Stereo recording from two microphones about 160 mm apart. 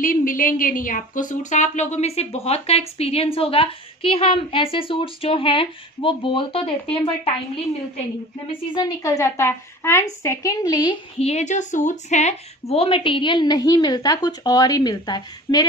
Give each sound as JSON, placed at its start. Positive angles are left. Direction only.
{"t": 0.0, "sound": "a woman's voice", "side_deg": 60}
{"t": 8.7, "sound": "a woman's voice", "side_deg": 25}
{"t": 11.1, "sound": "a woman's voice", "side_deg": 40}